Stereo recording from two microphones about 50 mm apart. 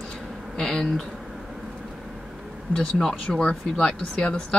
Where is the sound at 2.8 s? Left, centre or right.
Centre.